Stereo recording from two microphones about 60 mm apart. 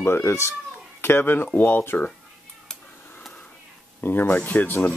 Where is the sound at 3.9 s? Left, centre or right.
Left.